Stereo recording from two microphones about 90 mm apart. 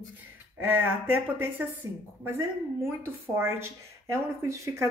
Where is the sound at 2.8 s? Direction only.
25° right (ahead or behind).